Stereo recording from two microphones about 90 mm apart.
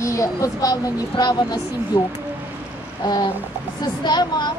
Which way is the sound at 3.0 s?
50° left (ahead or behind).